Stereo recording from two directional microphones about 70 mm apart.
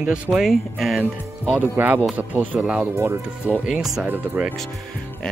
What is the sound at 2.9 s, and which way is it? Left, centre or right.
Speech, right.